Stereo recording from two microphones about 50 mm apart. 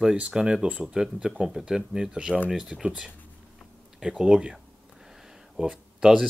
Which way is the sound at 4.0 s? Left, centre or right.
Centre.